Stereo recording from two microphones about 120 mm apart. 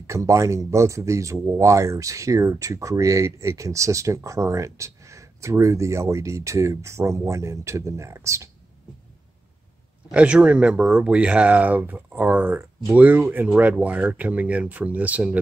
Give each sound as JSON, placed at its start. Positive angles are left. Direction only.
{"t": 0.0, "sound": "speech", "side_deg": -25}
{"t": 10.1, "sound": "speech", "side_deg": -10}